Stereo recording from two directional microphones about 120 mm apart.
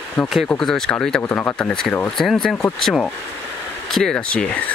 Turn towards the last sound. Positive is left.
turn(degrees=10)  # may be behind; listen again after turning